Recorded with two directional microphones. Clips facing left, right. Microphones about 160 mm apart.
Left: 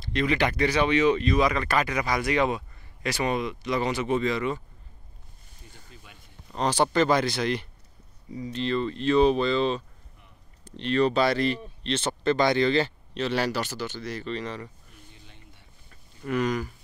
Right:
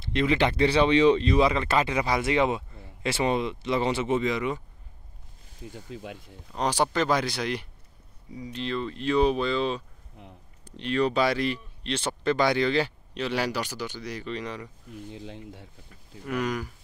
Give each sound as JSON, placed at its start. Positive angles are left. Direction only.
{"t": 0.0, "sound": "speech", "side_deg": -20}
{"t": 5.6, "sound": "speech", "side_deg": -90}
{"t": 6.5, "sound": "speech", "side_deg": -10}
{"t": 10.2, "sound": "a sound", "side_deg": -90}
{"t": 10.6, "sound": "speech", "side_deg": -10}
{"t": 14.9, "sound": "speech", "side_deg": -90}
{"t": 15.9, "sound": "speech", "side_deg": -10}